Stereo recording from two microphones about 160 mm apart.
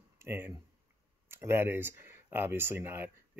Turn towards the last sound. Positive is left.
turn(degrees=-15)  # may be behind; listen again after turning